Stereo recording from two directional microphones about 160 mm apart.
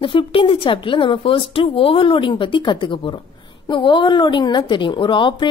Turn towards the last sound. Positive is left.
turn(degrees=30)  # may be behind; listen again after turning